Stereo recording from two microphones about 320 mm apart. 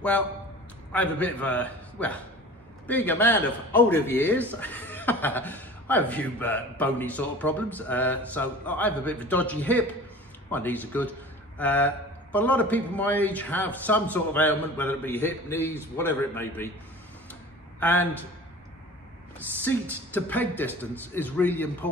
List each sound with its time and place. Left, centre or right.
0.9 s a man's voice: centre
17.3 s tick-tock: centre
19.6 s a man's voice: centre